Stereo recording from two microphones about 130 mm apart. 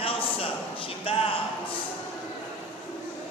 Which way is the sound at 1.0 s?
45° left (ahead or behind).